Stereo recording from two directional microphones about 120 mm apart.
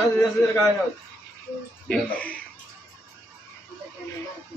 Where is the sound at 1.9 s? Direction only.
10° left (ahead or behind).